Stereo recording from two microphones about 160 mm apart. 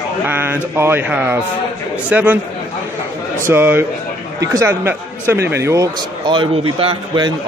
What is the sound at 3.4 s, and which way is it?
A man's voice, 15° right (ahead or behind).